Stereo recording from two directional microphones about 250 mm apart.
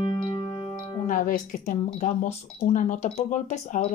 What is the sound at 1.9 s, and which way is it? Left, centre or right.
Speech, left.